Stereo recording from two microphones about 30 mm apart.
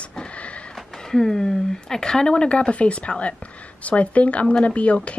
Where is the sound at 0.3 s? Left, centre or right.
Left.